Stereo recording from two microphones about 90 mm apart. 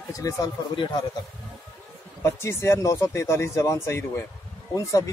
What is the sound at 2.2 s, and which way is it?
Speech, 30° left (ahead or behind).